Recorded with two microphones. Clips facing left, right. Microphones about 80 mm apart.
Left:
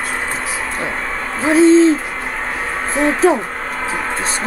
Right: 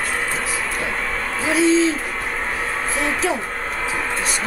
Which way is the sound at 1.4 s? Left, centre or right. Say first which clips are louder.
Left 7 dB; left.